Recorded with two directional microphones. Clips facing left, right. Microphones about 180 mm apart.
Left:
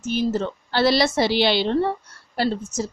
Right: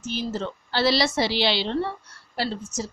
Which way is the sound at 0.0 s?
50° left (ahead or behind).